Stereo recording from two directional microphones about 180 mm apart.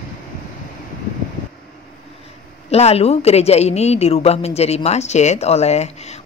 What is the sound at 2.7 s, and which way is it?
A woman's voice, 35° left (ahead or behind).